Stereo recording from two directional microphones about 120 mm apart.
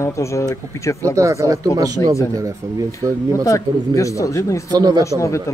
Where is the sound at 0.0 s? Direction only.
25° left (ahead or behind).